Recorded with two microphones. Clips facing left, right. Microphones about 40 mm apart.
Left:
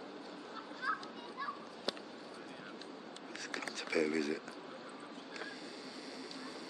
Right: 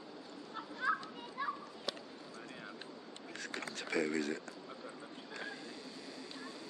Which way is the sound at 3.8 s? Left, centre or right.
Centre.